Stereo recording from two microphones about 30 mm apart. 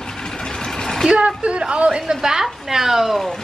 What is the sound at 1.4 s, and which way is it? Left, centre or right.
Speech, right.